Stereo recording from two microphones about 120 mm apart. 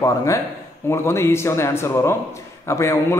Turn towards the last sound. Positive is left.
turn(degrees=25)  # may be behind; listen again after turning